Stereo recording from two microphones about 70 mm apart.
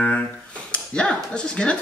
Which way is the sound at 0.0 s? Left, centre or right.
Centre.